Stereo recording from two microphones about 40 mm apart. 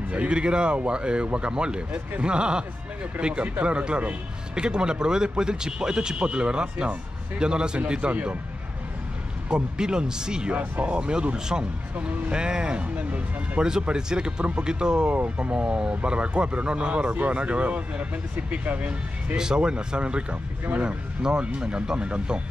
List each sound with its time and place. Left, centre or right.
0.1 s speech: right
9.5 s speech: right
10.5 s speech: right
10.9 s speech: right
19.3 s speech: centre